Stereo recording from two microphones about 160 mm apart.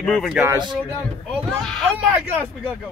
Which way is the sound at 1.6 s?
5° left (ahead or behind).